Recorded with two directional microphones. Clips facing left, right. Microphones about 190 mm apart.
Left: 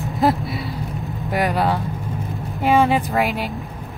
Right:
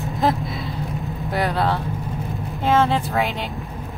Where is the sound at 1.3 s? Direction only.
10° left (ahead or behind).